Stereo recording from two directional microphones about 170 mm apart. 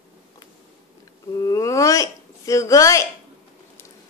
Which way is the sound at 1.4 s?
20° left (ahead or behind).